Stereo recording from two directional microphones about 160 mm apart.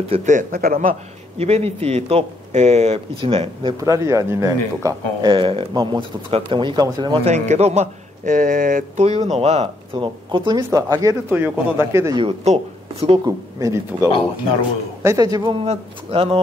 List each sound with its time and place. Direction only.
0.1 s a man's voice: 50° right (ahead or behind)
1.4 s speech: 40° right (ahead or behind)
3.8 s speech: 20° right (ahead or behind)
7.2 s a man's voice: 45° right (ahead or behind)
9.9 s speech: 30° right (ahead or behind)
12.2 s speech: 40° right (ahead or behind)
13.6 s speech: 20° right (ahead or behind); by 16.3 s 35° right (ahead or behind)